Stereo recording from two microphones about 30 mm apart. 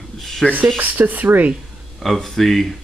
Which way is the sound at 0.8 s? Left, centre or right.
Right.